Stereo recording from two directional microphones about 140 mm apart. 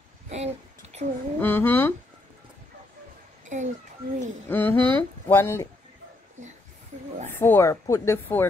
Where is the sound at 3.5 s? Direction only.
60° right (ahead or behind).